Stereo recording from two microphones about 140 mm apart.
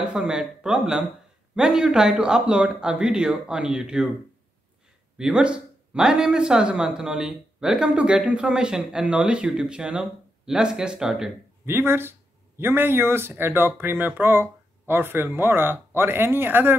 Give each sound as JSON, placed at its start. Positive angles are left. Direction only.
{"t": 0.0, "sound": "speech", "side_deg": -5}
{"t": 5.1, "sound": "speech", "side_deg": -5}
{"t": 11.6, "sound": "speech", "side_deg": -15}